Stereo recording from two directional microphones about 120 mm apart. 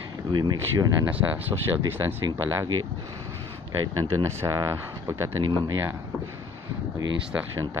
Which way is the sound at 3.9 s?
25° right (ahead or behind).